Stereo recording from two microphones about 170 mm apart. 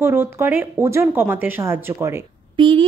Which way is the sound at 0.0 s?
15° right (ahead or behind).